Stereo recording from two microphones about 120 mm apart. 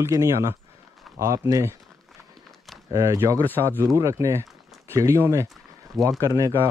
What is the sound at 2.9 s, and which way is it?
Speech, 25° right (ahead or behind).